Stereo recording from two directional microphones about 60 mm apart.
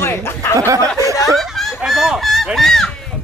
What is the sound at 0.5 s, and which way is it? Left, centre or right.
Speech, right.